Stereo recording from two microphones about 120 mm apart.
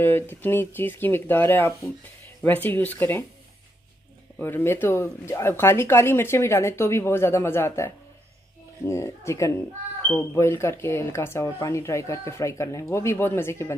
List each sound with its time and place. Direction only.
0.0 s speech: 15° left (ahead or behind)
4.4 s speech: 20° left (ahead or behind)